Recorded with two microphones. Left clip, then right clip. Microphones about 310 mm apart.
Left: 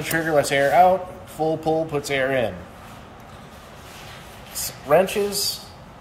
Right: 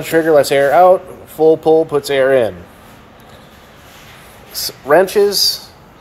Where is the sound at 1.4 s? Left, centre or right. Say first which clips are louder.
Right 12 dB; right.